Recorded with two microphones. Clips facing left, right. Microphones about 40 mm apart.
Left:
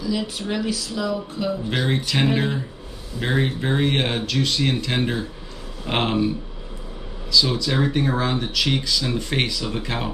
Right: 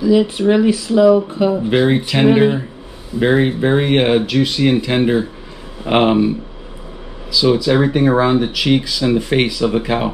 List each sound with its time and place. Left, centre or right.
0.0 s speech: right
7.3 s speech: centre